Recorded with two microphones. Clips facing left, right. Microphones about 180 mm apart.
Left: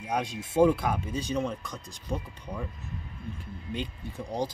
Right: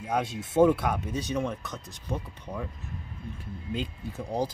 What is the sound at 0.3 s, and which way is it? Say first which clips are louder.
Speech: right 1 dB; 25° right (ahead or behind).